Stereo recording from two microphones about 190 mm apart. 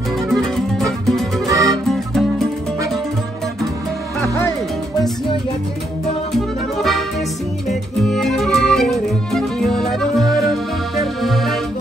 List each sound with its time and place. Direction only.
0.3 s music: centre (ahead or behind)
1.5 s music: 15° right (ahead or behind)
1.9 s music: centre (ahead or behind)
4.2 s music: 10° left (ahead or behind)
6.3 s music: centre (ahead or behind)
8.0 s music: centre (ahead or behind)